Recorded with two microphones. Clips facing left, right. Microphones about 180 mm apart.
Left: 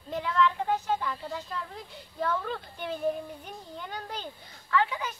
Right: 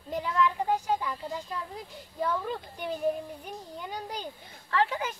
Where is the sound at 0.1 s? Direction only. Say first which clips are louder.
Left 1 dB; 10° right (ahead or behind).